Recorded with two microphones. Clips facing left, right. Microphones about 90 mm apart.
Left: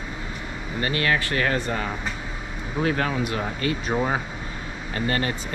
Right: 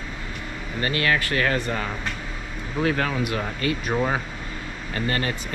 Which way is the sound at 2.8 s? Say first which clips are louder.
Even; 25° left (ahead or behind).